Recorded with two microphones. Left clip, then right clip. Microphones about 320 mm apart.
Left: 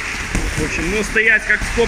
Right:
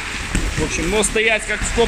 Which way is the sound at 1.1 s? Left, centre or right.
Centre.